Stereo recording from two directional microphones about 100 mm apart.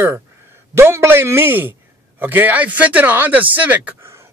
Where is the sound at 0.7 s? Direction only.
25° right (ahead or behind).